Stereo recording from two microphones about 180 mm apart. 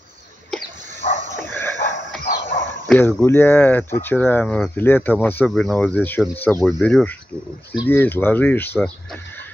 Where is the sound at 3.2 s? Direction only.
10° left (ahead or behind).